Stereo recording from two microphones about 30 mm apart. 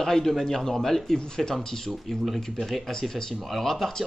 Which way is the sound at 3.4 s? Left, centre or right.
Centre.